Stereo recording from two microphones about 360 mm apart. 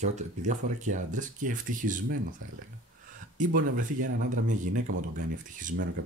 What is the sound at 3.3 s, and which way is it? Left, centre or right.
Speech, right.